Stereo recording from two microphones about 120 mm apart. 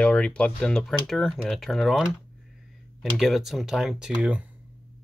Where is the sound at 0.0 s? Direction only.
10° left (ahead or behind).